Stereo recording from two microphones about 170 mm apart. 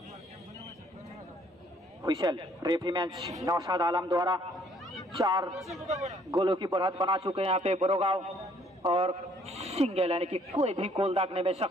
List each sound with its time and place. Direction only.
2.0 s speech: 25° right (ahead or behind)
5.5 s speech: centre (ahead or behind)
6.3 s a man's voice: 25° right (ahead or behind)